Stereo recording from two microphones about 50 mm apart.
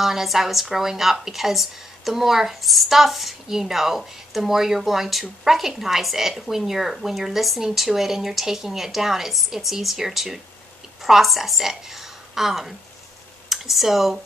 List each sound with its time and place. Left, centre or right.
0.0 s a woman's voice: centre